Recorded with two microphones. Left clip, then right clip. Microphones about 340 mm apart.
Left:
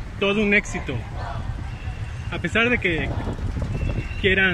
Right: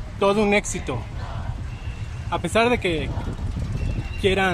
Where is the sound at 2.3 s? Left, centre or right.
Right.